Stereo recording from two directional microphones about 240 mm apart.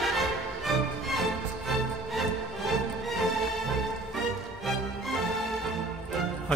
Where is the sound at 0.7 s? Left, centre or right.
Centre.